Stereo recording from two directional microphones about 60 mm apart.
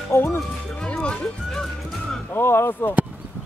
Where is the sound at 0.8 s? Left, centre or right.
Centre.